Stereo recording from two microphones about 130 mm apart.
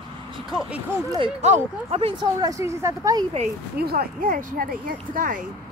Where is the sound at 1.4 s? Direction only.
55° right (ahead or behind).